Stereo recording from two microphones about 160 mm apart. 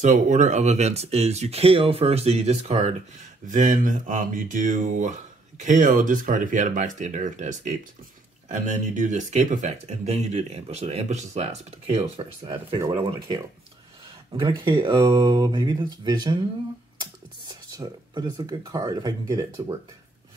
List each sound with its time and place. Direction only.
0.0 s speech: 50° right (ahead or behind)
3.4 s speech: 55° right (ahead or behind); by 12.8 s 35° right (ahead or behind)
12.8 s speech: 25° right (ahead or behind)